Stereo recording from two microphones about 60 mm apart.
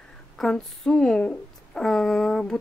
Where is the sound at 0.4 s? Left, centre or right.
Centre.